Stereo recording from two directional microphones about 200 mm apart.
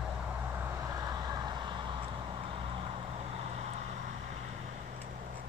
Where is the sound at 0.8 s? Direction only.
20° right (ahead or behind).